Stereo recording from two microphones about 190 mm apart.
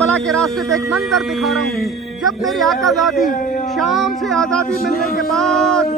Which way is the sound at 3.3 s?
45° left (ahead or behind).